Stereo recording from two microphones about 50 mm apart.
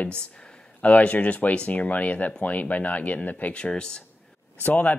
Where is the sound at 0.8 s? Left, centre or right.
Left.